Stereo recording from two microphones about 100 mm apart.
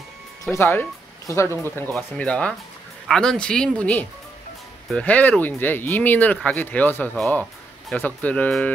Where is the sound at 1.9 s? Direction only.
10° left (ahead or behind).